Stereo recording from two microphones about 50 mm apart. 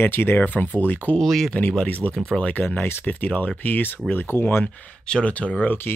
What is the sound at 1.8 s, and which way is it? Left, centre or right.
Speech, left.